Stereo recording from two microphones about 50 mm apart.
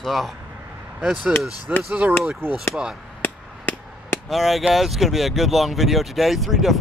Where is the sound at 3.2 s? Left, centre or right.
Left.